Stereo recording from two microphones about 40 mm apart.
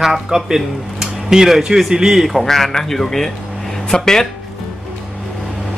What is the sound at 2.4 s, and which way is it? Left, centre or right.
Speech, centre.